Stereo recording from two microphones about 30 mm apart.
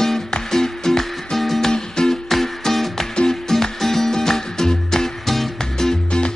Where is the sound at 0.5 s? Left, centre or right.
Centre.